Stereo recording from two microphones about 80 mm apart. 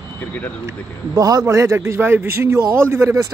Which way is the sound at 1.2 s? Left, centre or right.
Right.